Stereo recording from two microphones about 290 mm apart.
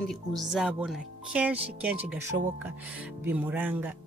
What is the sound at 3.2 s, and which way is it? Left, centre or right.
Speech, centre.